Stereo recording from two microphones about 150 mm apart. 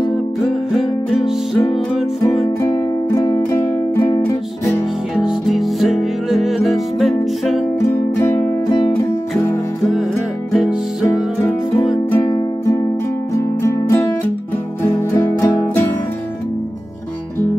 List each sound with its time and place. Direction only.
0.4 s music: centre (ahead or behind)
2.4 s music: 20° left (ahead or behind)
5.1 s music: 5° right (ahead or behind)
8.2 s music: 15° left (ahead or behind)
10.5 s music: 5° right (ahead or behind)
12.1 s music: 20° left (ahead or behind)